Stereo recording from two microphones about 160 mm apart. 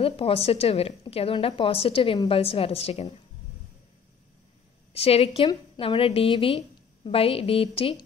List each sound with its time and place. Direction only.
0.0 s a woman's voice: 35° left (ahead or behind)
4.9 s a woman's voice: 40° left (ahead or behind)